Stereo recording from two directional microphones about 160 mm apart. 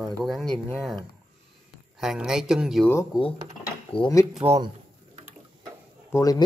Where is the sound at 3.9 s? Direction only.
25° left (ahead or behind).